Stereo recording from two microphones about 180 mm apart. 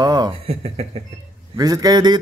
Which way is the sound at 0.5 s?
35° right (ahead or behind).